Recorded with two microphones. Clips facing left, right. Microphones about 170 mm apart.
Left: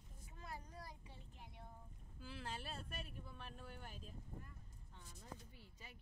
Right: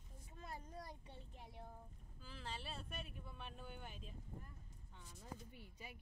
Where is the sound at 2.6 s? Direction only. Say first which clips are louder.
Even; centre (ahead or behind).